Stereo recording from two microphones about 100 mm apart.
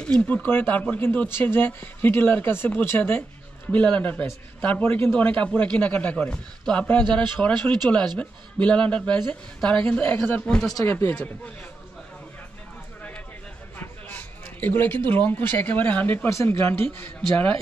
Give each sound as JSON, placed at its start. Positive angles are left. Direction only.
{"t": 0.0, "sound": "a man's voice", "side_deg": 10}
{"t": 13.7, "sound": "speech", "side_deg": 20}
{"t": 16.3, "sound": "speech", "side_deg": 25}